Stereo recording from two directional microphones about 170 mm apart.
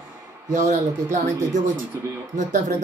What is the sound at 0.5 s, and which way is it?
Speech, 45° right (ahead or behind).